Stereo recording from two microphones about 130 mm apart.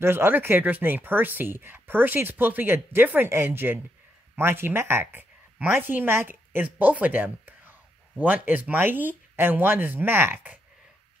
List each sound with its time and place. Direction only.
0.0 s speech: 15° right (ahead or behind)